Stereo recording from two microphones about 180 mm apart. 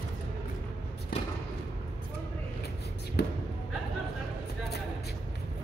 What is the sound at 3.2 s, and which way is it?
Basketball bounce, 65° left (ahead or behind).